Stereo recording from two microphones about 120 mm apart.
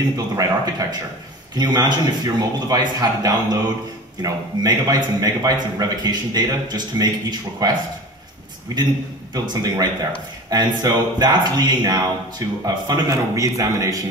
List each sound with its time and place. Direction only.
0.4 s a man's voice: 30° right (ahead or behind)
9.3 s a man's voice: 35° right (ahead or behind)